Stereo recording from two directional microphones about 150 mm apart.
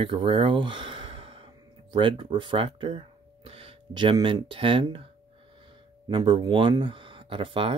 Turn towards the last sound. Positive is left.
turn(degrees=-35)  # may be behind; listen again after turning